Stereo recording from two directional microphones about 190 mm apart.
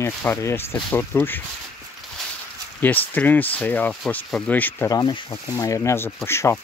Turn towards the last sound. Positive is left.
turn(degrees=15)  # may be behind; listen again after turning